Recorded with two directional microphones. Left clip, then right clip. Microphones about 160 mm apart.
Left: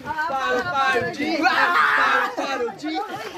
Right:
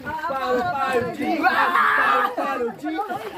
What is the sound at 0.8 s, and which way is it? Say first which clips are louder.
Speech: left 1 dB; 20° left (ahead or behind).